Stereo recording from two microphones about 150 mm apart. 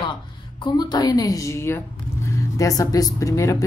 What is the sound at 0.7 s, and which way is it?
Speech, 30° left (ahead or behind).